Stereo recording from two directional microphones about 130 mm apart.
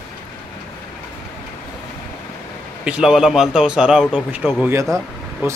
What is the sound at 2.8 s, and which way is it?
Speech, 5° right (ahead or behind).